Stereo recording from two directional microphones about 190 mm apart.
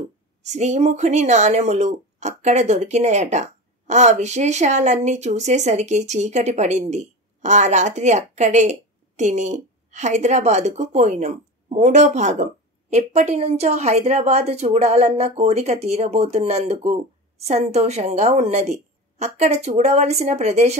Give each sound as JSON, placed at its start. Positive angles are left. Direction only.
{"t": 0.4, "sound": "speech", "side_deg": -35}